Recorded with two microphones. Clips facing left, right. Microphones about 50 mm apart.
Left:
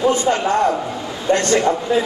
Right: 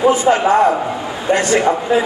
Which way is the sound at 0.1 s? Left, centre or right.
Centre.